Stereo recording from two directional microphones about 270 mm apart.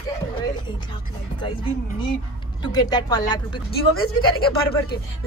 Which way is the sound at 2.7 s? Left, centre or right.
Centre.